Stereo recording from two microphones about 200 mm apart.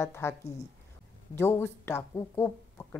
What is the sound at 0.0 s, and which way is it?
A woman's voice, 10° left (ahead or behind).